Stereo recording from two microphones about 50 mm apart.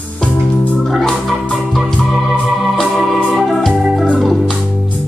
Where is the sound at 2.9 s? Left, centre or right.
Centre.